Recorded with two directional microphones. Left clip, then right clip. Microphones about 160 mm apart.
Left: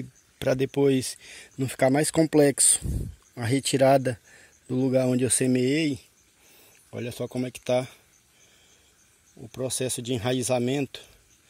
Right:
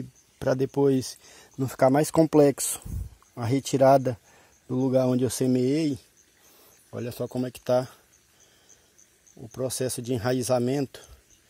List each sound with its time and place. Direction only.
0.4 s speech: 5° left (ahead or behind)
1.6 s speech: 25° left (ahead or behind)
1.9 s speech: 5° left (ahead or behind)
9.4 s speech: centre (ahead or behind)